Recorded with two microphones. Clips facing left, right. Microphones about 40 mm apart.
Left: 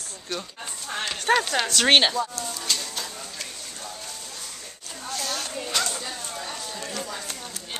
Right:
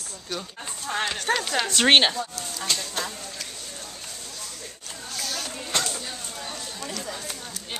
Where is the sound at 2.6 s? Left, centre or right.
Right.